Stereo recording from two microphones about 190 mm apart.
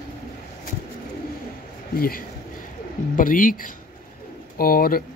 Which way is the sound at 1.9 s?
50° left (ahead or behind).